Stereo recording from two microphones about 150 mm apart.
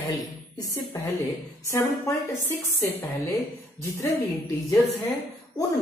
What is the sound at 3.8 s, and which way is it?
Speech, 20° left (ahead or behind).